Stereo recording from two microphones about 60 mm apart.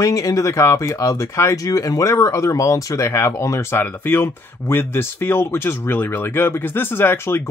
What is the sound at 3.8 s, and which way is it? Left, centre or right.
Speech, left.